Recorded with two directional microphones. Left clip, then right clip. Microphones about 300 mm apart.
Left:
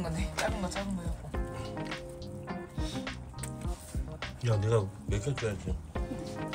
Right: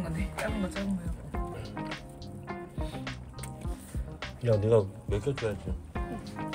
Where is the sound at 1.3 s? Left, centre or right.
Centre.